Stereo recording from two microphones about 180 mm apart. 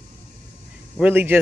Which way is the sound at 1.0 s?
10° right (ahead or behind).